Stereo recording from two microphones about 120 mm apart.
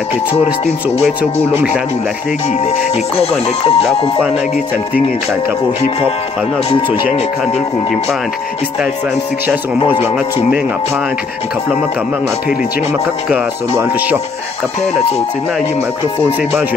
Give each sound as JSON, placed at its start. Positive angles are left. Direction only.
{"t": 0.7, "sound": "speech", "side_deg": 65}
{"t": 1.4, "sound": "speech", "side_deg": -20}
{"t": 2.6, "sound": "speech", "side_deg": 60}
{"t": 7.5, "sound": "speech", "side_deg": 5}
{"t": 13.7, "sound": "speech", "side_deg": -20}